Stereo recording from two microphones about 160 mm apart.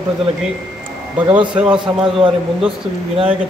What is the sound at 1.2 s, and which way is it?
Speech, 30° right (ahead or behind).